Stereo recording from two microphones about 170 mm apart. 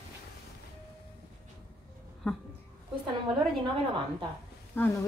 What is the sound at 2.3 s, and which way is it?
Speech, 5° left (ahead or behind).